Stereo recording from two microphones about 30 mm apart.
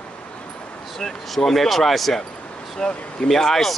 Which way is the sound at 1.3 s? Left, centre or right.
Centre.